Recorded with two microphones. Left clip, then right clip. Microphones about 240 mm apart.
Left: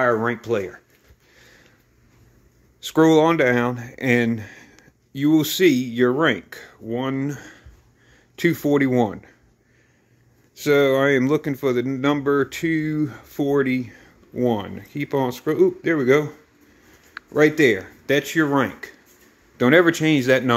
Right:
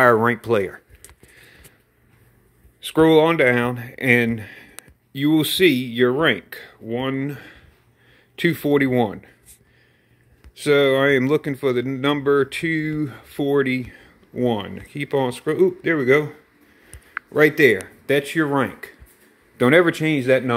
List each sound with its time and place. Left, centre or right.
0.0 s speech: centre
1.3 s a sound: centre
2.8 s speech: centre
10.5 s speech: centre